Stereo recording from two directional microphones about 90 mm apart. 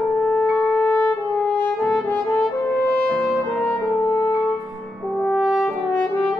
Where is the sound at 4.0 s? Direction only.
25° left (ahead or behind).